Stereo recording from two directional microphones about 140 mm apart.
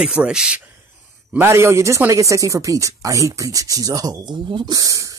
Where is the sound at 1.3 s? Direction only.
15° right (ahead or behind).